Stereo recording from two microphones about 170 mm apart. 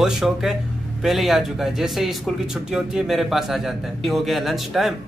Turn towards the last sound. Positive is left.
turn(degrees=0)  # may be behind; listen again after turning